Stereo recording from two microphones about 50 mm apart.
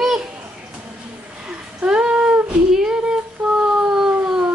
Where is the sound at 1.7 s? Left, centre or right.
Centre.